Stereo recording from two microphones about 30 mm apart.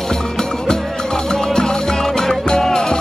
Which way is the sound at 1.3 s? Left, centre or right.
Left.